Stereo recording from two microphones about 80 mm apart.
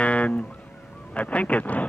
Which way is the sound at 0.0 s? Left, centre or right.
Centre.